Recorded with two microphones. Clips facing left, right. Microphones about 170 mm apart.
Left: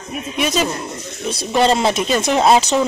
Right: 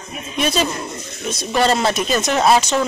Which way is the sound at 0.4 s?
10° left (ahead or behind).